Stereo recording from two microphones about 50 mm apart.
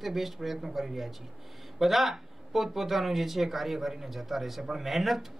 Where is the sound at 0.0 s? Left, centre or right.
Centre.